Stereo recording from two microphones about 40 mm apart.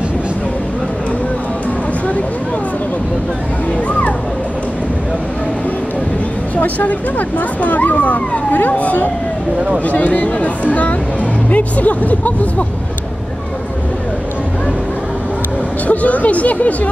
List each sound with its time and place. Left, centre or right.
6.5 s speech: left
15.9 s speech: left